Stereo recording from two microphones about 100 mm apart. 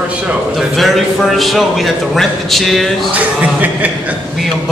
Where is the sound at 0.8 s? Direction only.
Centre (ahead or behind).